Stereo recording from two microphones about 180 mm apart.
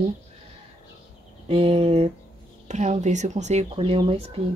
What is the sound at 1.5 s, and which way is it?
Speech, 30° right (ahead or behind).